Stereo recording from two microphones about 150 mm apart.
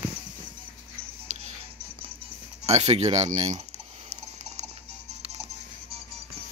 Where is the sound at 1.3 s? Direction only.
50° right (ahead or behind).